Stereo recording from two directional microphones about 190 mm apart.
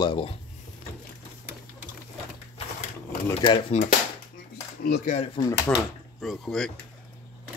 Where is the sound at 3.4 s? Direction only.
30° left (ahead or behind).